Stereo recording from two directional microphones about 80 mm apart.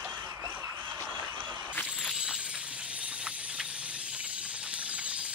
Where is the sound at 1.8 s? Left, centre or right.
Centre.